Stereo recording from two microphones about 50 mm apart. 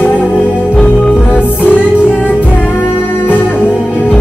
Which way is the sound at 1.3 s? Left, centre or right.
Left.